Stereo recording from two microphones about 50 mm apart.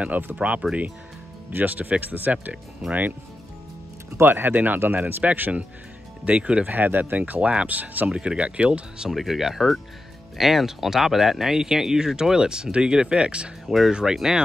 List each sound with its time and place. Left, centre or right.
0.2 s speech: right
4.2 s speech: right
6.2 s speech: right
6.7 s speech: right
8.1 s speech: right
9.1 s speech: centre; by 13.5 s right
13.7 s speech: centre